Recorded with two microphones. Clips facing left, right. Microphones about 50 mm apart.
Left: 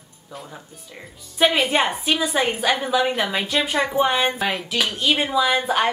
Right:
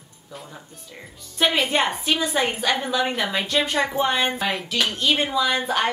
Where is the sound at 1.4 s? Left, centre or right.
Centre.